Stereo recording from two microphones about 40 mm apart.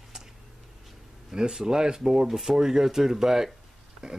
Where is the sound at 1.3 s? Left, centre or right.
Centre.